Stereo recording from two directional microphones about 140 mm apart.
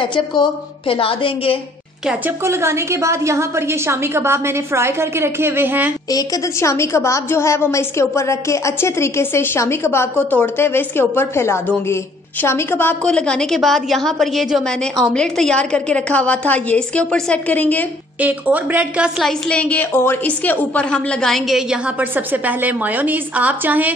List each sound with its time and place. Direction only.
0.0 s a woman's voice: 35° left (ahead or behind)
2.4 s a woman's voice: 20° right (ahead or behind)
6.0 s a woman's voice: 25° left (ahead or behind)
18.2 s a woman's voice: 10° right (ahead or behind)
19.5 s a woman's voice: 10° left (ahead or behind); by 23.9 s 10° right (ahead or behind)